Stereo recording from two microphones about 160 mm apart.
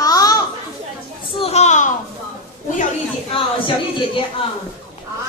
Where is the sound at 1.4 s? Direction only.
45° left (ahead or behind).